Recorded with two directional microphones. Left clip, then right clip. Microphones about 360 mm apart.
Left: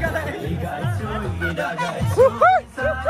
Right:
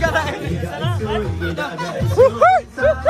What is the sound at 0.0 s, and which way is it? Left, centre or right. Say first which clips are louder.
Music: right 6 dB; centre.